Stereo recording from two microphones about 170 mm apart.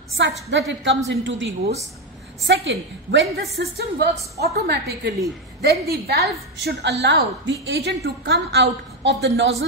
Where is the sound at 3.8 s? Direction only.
70° right (ahead or behind).